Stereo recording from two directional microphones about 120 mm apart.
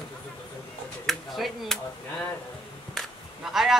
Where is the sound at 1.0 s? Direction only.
Centre (ahead or behind).